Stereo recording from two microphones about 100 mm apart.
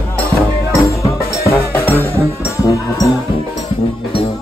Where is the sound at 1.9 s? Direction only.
20° right (ahead or behind).